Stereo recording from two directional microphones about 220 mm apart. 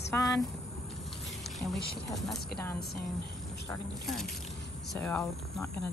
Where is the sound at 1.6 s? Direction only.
10° left (ahead or behind).